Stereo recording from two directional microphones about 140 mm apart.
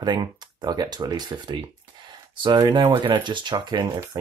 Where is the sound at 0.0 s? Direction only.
30° right (ahead or behind).